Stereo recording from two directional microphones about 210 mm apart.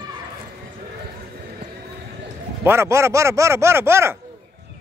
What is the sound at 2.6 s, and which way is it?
Speech, 10° right (ahead or behind).